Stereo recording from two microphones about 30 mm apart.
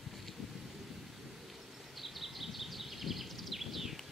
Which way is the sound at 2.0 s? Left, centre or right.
Centre.